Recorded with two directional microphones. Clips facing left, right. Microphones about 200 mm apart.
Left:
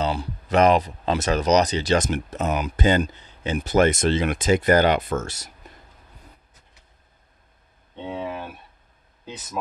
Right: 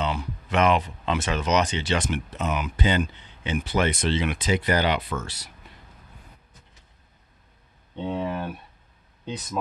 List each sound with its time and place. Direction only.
0.0 s speech: 35° left (ahead or behind)
7.9 s speech: 5° left (ahead or behind)